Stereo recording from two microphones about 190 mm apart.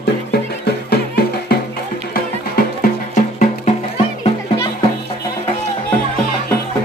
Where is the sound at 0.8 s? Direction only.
55° left (ahead or behind); by 4.3 s 35° left (ahead or behind).